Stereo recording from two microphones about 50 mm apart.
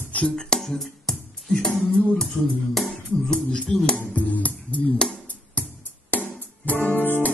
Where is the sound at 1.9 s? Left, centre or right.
Centre.